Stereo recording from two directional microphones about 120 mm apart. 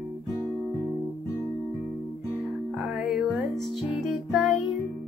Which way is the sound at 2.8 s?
5° right (ahead or behind).